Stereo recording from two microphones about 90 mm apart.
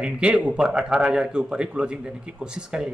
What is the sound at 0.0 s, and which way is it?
Speech, 10° right (ahead or behind).